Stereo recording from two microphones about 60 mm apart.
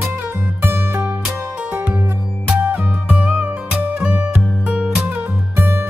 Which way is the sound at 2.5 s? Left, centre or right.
Right.